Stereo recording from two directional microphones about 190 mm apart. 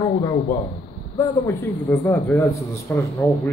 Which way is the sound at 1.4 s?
10° left (ahead or behind).